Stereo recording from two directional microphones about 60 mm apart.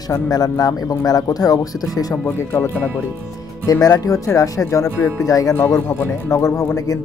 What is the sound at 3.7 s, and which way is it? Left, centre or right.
Speech, left.